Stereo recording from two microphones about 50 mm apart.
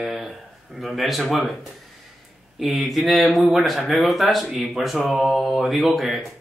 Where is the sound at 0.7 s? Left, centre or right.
Centre.